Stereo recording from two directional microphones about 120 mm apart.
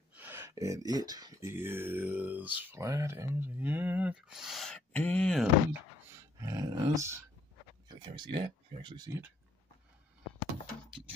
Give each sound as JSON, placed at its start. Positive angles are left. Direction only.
{"t": 0.1, "sound": "speech", "side_deg": -15}
{"t": 1.5, "sound": "speech", "side_deg": -20}
{"t": 4.9, "sound": "speech", "side_deg": 10}
{"t": 5.7, "sound": "speech", "side_deg": -25}
{"t": 8.0, "sound": "speech", "side_deg": -45}